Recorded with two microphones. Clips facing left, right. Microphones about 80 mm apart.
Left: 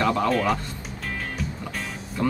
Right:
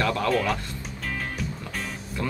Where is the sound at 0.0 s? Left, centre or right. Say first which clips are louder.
Left 2 dB; left.